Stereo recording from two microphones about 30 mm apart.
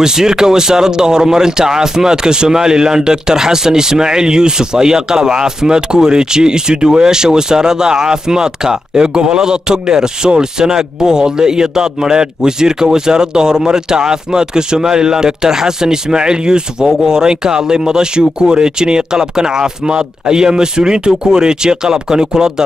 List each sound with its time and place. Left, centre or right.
0.0 s speech: centre